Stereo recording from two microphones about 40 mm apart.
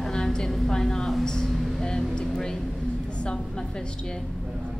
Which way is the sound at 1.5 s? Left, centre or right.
Centre.